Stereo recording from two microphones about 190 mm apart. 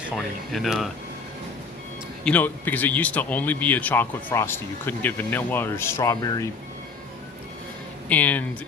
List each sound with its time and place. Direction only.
0.5 s speech: centre (ahead or behind)
2.2 s speech: 10° left (ahead or behind)
8.1 s speech: 10° left (ahead or behind)